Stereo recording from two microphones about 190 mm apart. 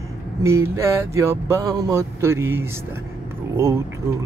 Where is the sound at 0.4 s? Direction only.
15° right (ahead or behind).